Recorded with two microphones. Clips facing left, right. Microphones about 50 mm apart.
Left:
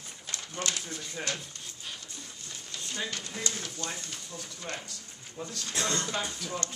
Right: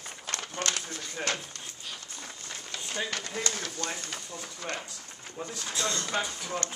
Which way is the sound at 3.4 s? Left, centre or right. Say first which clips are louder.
Right 3 dB; right.